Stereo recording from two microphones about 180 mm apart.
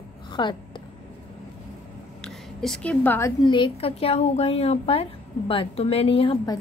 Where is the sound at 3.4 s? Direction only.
25° left (ahead or behind).